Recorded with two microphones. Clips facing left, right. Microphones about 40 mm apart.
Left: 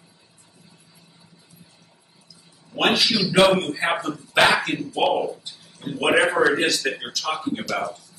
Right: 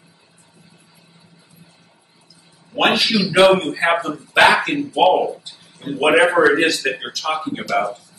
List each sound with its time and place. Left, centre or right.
2.7 s speech: centre